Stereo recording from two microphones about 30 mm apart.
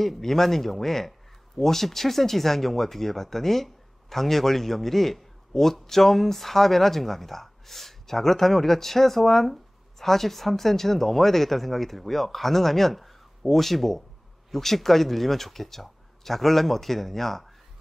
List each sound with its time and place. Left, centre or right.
0.0 s speech: centre